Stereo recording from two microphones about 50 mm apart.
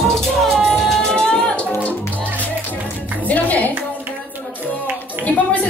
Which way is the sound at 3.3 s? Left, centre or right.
Left.